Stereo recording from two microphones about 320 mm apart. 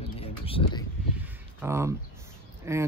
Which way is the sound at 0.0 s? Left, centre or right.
Centre.